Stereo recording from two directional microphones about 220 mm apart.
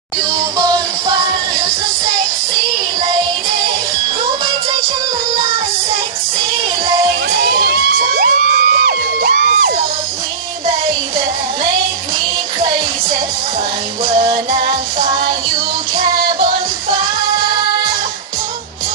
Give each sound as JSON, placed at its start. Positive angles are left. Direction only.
{"t": 0.3, "sound": "music", "side_deg": -15}
{"t": 7.2, "sound": "crowd", "side_deg": -40}
{"t": 14.6, "sound": "music", "side_deg": -25}